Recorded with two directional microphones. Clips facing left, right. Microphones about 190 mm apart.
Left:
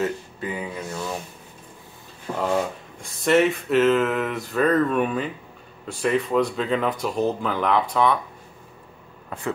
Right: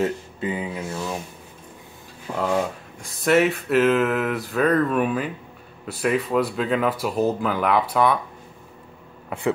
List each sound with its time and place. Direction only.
0.0 s speech: 25° right (ahead or behind)
0.9 s speech: 10° right (ahead or behind)
2.4 s speech: centre (ahead or behind)